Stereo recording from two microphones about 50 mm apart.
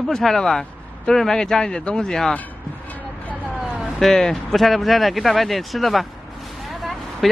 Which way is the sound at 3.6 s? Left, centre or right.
Centre.